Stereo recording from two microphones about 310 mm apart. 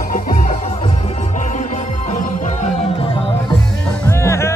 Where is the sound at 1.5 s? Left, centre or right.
Left.